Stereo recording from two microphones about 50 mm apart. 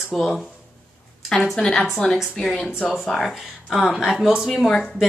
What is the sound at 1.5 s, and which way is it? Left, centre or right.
A woman's voice, centre.